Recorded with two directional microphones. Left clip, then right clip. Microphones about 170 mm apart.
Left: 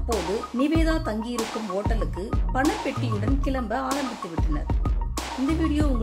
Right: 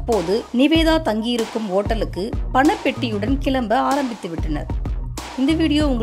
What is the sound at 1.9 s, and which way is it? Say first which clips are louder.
Speech: right 7 dB; 35° right (ahead or behind).